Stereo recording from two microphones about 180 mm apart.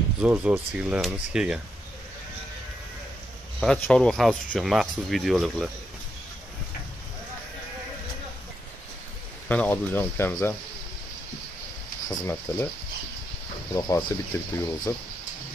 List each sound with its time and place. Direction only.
0.2 s speech: 5° right (ahead or behind)
3.5 s speech: centre (ahead or behind)
9.5 s speech: 10° left (ahead or behind)
12.1 s speech: 15° left (ahead or behind)
13.7 s speech: 20° left (ahead or behind)